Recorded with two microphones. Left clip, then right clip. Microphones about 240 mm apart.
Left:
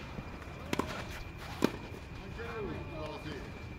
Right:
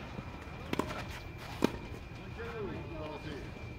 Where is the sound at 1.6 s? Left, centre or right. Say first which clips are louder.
Even; centre.